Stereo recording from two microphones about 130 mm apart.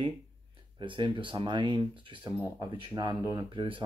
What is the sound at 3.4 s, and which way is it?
Speech, 40° right (ahead or behind).